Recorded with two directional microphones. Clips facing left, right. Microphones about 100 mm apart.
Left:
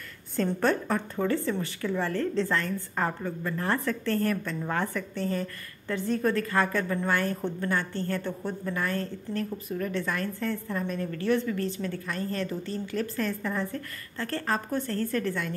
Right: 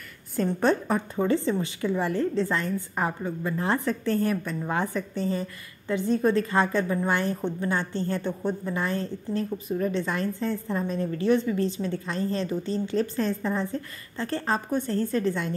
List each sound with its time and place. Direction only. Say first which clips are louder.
0.6 s a woman's voice: right 4 dB; 15° right (ahead or behind)